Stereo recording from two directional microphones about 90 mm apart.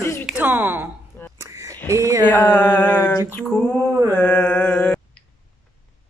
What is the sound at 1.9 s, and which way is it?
Speech, 35° right (ahead or behind).